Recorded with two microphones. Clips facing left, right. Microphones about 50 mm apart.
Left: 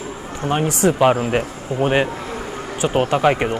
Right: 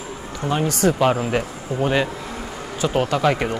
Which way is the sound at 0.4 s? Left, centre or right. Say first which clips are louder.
Left 2 dB; left.